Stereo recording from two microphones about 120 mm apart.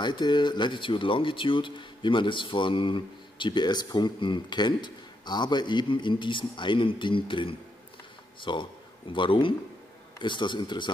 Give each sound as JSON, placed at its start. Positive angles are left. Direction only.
{"t": 0.0, "sound": "a man's voice", "side_deg": 40}